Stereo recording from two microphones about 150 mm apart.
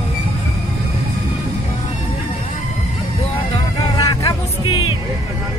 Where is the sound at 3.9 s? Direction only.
25° left (ahead or behind).